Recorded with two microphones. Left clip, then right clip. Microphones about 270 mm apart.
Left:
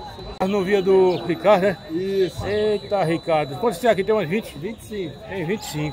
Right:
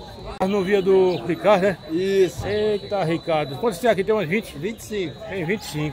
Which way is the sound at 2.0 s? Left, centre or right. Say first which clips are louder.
Right 3 dB; right.